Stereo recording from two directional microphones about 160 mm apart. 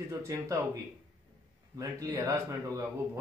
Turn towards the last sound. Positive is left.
turn(degrees=-20)  # may be behind; listen again after turning